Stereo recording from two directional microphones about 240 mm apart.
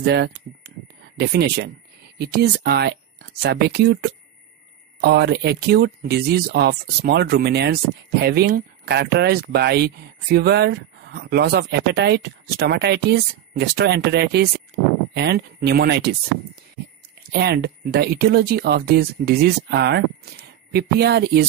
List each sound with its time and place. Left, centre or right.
0.0 s speech: right
17.3 s speech: right